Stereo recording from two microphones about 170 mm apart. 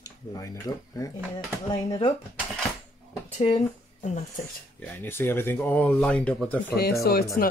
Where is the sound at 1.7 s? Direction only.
30° left (ahead or behind).